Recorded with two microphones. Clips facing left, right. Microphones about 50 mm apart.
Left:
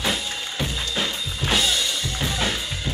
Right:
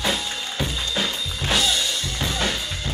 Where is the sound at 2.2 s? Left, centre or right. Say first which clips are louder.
Even; centre.